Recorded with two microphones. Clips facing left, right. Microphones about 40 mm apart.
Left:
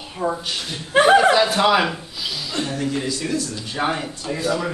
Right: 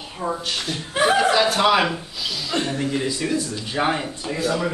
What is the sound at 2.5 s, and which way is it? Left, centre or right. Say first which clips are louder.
Speech: right 3 dB; right.